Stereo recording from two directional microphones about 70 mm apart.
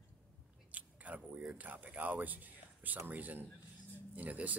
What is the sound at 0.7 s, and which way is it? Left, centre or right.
Biting, right.